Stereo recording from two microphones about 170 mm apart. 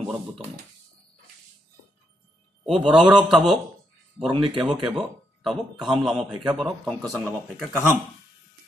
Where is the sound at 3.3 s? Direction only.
Centre (ahead or behind).